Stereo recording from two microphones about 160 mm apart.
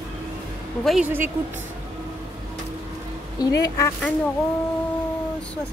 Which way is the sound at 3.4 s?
25° left (ahead or behind).